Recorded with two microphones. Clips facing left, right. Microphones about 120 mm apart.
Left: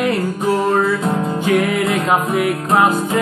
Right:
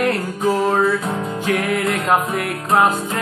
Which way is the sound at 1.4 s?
Centre (ahead or behind).